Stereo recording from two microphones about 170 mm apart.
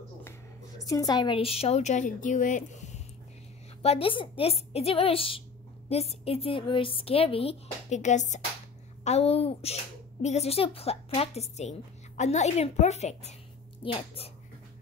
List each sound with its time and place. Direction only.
0.8 s a woman's voice: 20° left (ahead or behind)